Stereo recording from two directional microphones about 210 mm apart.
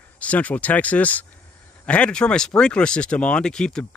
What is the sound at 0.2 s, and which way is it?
Speech, 5° left (ahead or behind).